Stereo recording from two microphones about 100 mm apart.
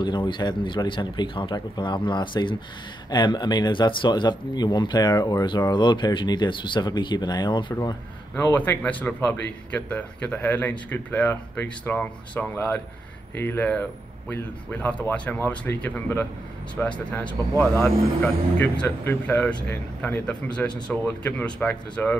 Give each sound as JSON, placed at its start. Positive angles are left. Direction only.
{"t": 0.0, "sound": "speech", "side_deg": 55}
{"t": 8.4, "sound": "speech", "side_deg": 15}
{"t": 17.6, "sound": "speech", "side_deg": 25}
{"t": 18.2, "sound": "speech", "side_deg": 15}